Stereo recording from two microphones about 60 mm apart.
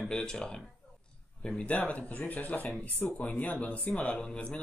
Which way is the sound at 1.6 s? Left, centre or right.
Left.